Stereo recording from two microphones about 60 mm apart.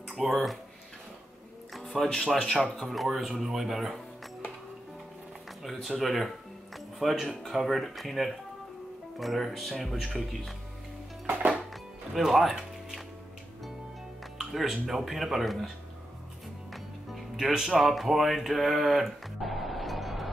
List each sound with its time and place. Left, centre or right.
0.3 s speech: centre
1.7 s speech: centre
5.6 s speech: centre
11.7 s music: centre
14.4 s speech: centre
16.7 s music: centre
17.6 s speech: centre